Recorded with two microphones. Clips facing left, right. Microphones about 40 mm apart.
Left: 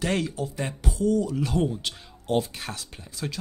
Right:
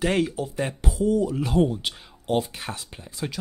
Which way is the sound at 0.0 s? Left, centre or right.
Centre.